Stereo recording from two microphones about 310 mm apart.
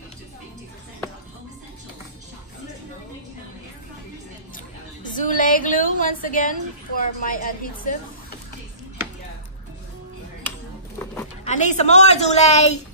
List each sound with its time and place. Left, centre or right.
5.0 s a woman's voice: left
11.4 s a woman's voice: left